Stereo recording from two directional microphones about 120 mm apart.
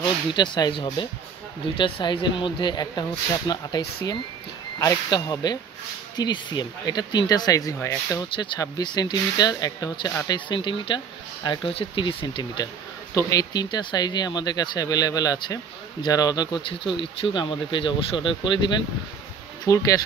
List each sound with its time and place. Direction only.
0.3 s speech: 40° left (ahead or behind)
8.4 s speech: 35° left (ahead or behind)
13.1 s speech: 30° left (ahead or behind)
19.6 s speech: 30° left (ahead or behind)